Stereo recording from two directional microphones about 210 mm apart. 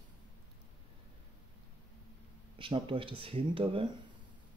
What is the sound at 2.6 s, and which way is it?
Speech, 25° right (ahead or behind).